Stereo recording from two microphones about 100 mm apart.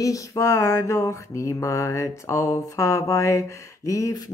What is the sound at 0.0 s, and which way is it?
Mantra, 35° left (ahead or behind).